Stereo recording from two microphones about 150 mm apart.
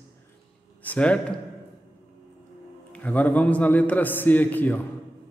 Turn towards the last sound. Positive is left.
turn(degrees=10)  # may be behind; listen again after turning